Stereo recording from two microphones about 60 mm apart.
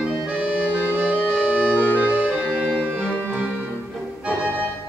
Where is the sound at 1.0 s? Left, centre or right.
Right.